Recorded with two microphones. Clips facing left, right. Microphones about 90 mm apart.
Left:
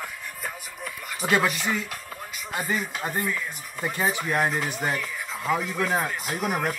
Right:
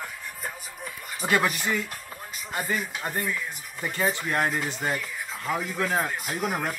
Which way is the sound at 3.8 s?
15° left (ahead or behind).